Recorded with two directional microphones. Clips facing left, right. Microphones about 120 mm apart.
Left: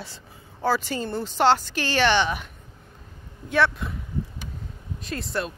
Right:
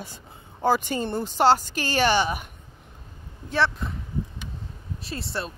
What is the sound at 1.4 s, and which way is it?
A woman's voice, 40° right (ahead or behind).